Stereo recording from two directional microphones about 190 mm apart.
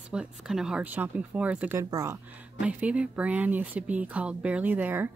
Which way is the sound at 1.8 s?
15° right (ahead or behind).